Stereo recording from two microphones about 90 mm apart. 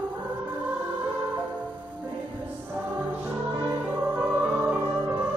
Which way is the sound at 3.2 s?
20° right (ahead or behind).